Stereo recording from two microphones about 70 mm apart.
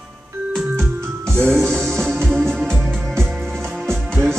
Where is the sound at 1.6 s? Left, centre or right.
Centre.